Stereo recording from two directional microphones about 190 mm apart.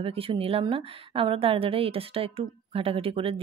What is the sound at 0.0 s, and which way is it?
A woman's voice, 30° right (ahead or behind).